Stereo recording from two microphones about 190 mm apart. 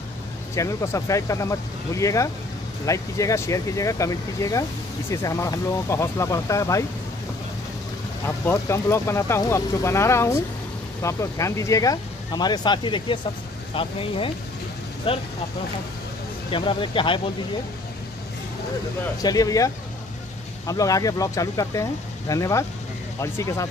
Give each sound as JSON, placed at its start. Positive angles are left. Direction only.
{"t": 0.6, "sound": "speech", "side_deg": 15}
{"t": 8.3, "sound": "speech", "side_deg": 15}
{"t": 16.4, "sound": "speech", "side_deg": 25}
{"t": 19.2, "sound": "speech", "side_deg": 20}